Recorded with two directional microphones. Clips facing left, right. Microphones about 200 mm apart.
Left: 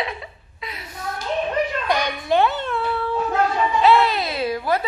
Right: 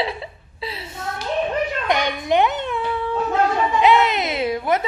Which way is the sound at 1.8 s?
20° right (ahead or behind).